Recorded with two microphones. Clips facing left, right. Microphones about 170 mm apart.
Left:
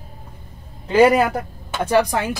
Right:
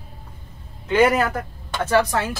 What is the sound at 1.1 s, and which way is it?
Speech, 10° left (ahead or behind).